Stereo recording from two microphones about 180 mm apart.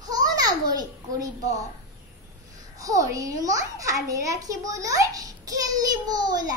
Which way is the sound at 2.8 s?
20° right (ahead or behind).